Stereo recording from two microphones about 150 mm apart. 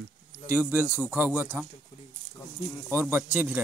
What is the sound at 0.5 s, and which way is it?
Speech, 15° right (ahead or behind).